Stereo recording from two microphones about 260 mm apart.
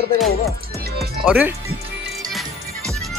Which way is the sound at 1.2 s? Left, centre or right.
Centre.